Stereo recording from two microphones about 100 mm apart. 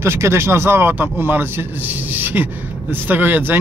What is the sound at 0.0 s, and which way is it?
Speech, 25° right (ahead or behind).